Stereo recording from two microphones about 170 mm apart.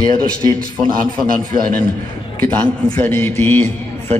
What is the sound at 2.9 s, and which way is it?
A man's voice, 10° left (ahead or behind).